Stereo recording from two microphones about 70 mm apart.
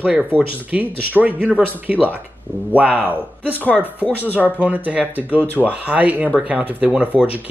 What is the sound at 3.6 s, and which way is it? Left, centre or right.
Speech, centre.